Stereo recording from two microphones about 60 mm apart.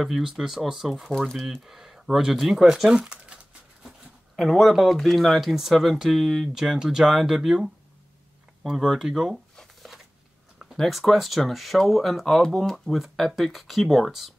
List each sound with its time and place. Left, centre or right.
0.0 s speech: centre
1.0 s speech: centre
1.6 s speech: centre
3.0 s speech: centre
4.4 s speech: centre
8.8 s speech: centre
10.8 s speech: centre